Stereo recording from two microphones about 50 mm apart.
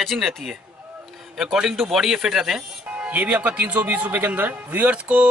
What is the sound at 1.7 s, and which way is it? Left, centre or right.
Speech, centre.